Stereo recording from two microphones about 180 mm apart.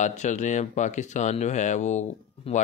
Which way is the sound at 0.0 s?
40° left (ahead or behind).